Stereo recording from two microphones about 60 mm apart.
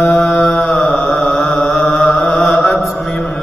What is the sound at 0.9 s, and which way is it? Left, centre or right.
Mantra, centre.